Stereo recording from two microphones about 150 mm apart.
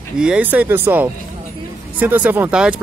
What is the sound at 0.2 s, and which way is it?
Speech, 10° right (ahead or behind).